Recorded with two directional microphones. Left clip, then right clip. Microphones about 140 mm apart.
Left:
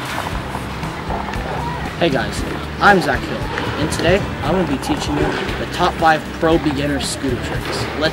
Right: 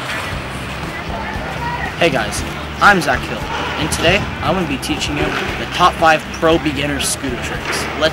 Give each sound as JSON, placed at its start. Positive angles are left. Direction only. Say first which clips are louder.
{"t": 2.0, "sound": "speech", "louder": "right 2 dB", "side_deg": 0}